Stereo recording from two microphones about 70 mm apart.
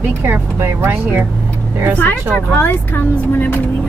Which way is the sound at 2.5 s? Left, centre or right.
Left.